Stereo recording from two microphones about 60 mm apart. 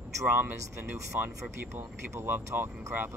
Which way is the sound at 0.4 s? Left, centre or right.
Right.